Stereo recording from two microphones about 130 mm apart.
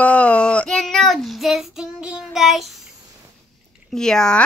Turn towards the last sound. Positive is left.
turn(degrees=5)  # may be behind; listen again after turning